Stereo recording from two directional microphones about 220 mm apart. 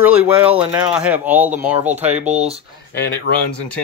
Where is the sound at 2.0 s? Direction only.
30° right (ahead or behind).